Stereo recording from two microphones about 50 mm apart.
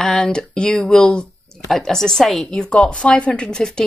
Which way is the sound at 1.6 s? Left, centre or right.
Centre.